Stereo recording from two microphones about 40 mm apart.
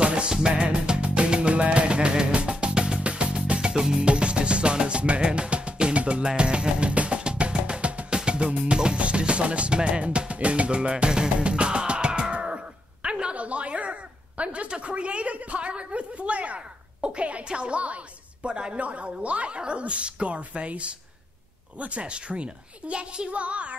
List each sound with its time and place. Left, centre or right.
0.0 s music: right
0.6 s music: right
8.1 s a woman's voice: right